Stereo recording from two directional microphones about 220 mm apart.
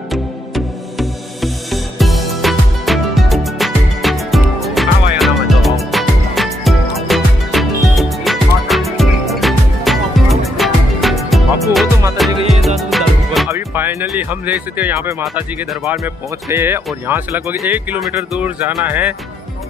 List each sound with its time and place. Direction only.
0.1 s music: centre (ahead or behind)
12.3 s music: 25° right (ahead or behind)
12.6 s music: centre (ahead or behind)
13.5 s speech: 10° right (ahead or behind)